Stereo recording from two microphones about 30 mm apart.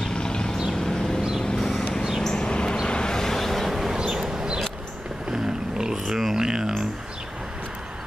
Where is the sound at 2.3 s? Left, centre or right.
Left.